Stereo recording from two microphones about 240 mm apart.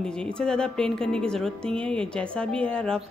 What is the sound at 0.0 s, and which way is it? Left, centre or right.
Speech, centre.